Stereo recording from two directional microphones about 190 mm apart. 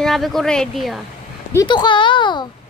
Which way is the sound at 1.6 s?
25° left (ahead or behind).